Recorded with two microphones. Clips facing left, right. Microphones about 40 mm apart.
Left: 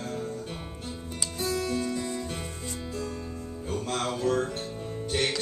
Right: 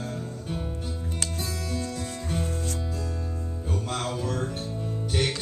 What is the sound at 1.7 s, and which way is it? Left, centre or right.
Music, left.